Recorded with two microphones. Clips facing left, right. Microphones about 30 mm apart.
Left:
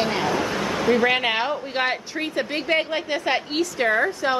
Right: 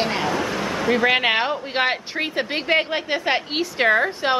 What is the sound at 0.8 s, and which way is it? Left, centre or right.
A woman's voice, centre.